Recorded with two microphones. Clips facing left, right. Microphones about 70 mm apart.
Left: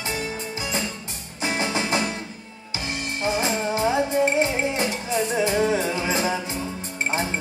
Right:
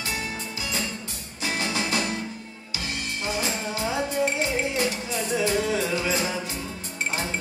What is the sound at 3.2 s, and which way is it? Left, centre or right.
Music, left.